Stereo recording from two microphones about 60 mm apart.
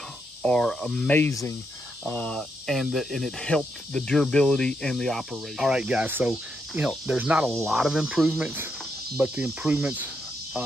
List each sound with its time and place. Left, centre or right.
0.4 s speech: centre
0.7 s speech: centre
1.0 s speech: left
1.3 s speech: left
2.0 s speech: left
2.3 s speech: centre
5.3 s speech: centre
6.2 s cricket: centre
7.4 s speech: centre
9.2 s cricket: centre